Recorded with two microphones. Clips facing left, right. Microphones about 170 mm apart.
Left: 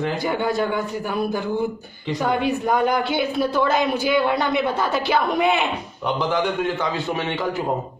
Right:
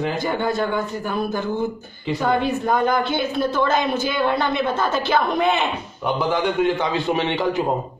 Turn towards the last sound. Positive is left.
turn(degrees=-20)  # may be behind; listen again after turning